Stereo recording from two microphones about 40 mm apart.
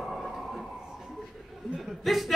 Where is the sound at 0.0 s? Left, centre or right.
Centre.